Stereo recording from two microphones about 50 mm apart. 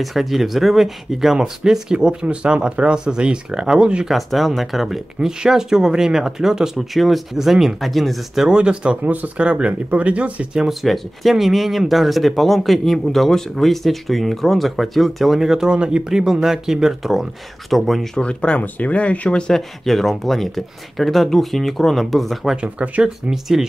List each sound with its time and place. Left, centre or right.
0.0 s speech: centre
4.1 s speech: centre
8.5 s speech: centre
9.0 s speech: right
10.7 s speech: centre
18.1 s speech: left; by 22.6 s centre
22.6 s speech: right
23.5 s speech: centre